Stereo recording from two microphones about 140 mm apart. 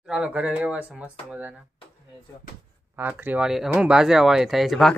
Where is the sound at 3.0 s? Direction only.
15° right (ahead or behind).